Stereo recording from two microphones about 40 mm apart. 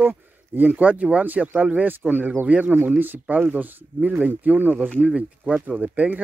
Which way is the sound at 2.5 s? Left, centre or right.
Right.